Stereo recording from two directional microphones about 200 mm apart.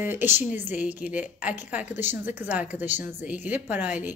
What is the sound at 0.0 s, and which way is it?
A woman's voice, 10° right (ahead or behind).